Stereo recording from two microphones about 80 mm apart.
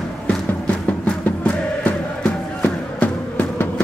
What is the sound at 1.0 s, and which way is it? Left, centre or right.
Music, centre.